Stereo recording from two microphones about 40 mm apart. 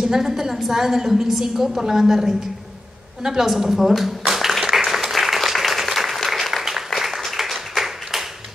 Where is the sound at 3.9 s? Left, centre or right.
Centre.